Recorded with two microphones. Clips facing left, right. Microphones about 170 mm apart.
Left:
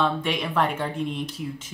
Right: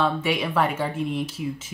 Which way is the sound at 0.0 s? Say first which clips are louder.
Right 1 dB; 5° right (ahead or behind).